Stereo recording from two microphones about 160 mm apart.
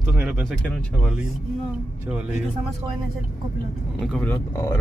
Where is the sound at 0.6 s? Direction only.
10° left (ahead or behind).